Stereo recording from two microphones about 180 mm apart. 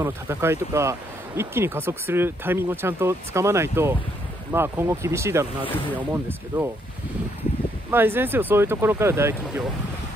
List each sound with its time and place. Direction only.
0.0 s speech: 15° right (ahead or behind)
7.9 s speech: 10° right (ahead or behind)